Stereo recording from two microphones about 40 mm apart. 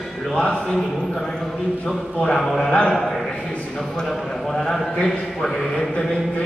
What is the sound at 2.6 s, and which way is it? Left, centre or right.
Speech, centre.